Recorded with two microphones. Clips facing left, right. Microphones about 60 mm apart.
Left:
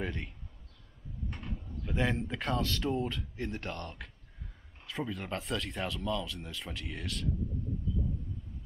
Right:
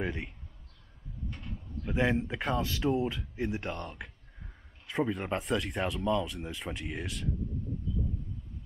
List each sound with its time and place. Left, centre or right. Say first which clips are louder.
0.0 s speech: right 3 dB; centre
1.3 s a sound: left 1 dB; centre
1.9 s speech: right 3 dB; centre
4.8 s speech: right 6 dB; right